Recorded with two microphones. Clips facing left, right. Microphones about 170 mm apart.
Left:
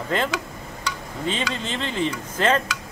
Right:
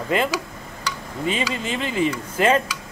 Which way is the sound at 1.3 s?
10° right (ahead or behind).